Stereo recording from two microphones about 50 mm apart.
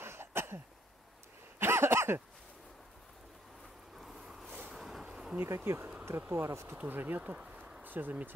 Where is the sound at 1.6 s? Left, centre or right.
Right.